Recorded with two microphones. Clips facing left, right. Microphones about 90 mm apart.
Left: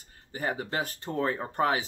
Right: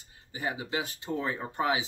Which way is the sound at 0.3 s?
45° left (ahead or behind).